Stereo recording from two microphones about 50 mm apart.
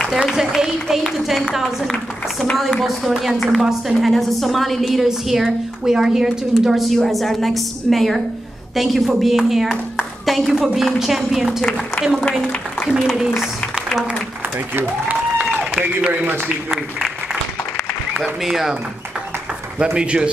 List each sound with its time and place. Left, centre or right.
0.2 s a woman's voice: centre
4.1 s a woman's voice: centre
16.1 s a man's voice: right
16.4 s speech: centre
18.2 s speech: centre
19.8 s speech: right